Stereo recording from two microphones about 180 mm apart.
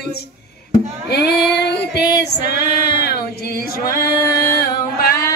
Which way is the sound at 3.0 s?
60° left (ahead or behind).